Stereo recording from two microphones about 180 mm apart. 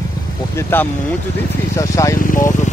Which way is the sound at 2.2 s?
50° left (ahead or behind).